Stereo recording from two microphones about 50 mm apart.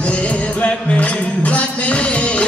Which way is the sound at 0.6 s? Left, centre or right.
Left.